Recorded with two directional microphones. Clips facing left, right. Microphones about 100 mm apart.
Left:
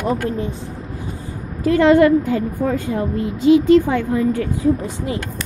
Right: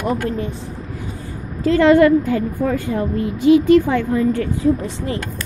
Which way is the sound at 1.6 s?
20° left (ahead or behind).